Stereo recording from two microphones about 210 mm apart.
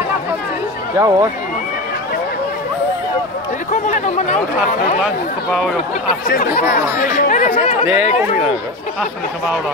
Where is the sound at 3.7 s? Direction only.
35° left (ahead or behind).